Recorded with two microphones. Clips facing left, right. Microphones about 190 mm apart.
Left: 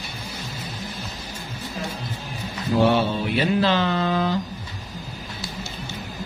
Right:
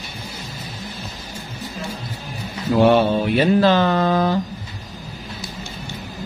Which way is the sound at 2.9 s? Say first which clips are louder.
Right 5 dB; 45° right (ahead or behind).